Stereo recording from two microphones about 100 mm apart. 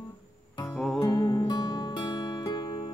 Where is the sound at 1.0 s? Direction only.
40° left (ahead or behind).